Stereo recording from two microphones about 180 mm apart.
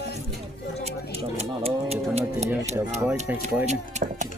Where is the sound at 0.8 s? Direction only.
35° right (ahead or behind).